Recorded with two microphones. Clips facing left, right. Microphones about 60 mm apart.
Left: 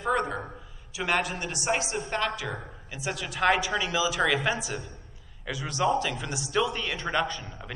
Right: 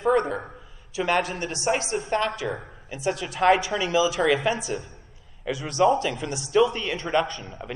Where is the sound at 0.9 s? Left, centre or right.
Right.